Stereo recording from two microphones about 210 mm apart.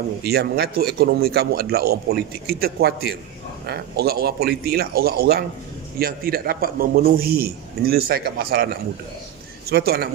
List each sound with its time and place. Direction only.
0.2 s a man's voice: 50° right (ahead or behind)
9.7 s a man's voice: 45° right (ahead or behind)